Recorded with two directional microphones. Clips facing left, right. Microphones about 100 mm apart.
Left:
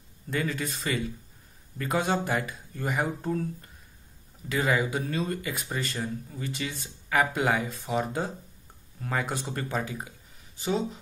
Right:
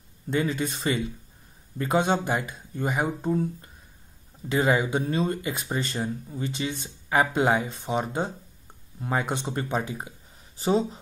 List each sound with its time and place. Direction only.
0.3 s speech: 25° right (ahead or behind)
4.5 s speech: 30° right (ahead or behind)
10.6 s speech: 35° right (ahead or behind)